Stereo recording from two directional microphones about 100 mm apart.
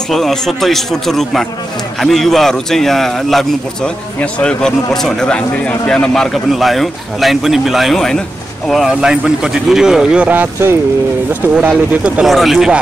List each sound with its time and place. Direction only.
0.1 s speech: 5° left (ahead or behind)